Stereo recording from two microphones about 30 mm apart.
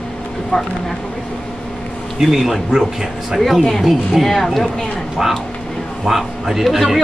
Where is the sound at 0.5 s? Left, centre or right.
Left.